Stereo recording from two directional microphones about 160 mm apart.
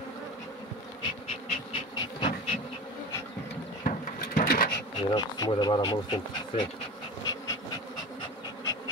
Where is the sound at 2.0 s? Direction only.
30° left (ahead or behind).